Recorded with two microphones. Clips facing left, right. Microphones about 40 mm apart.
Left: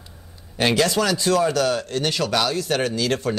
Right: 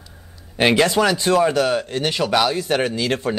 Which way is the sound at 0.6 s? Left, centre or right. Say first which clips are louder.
Right 3 dB; right.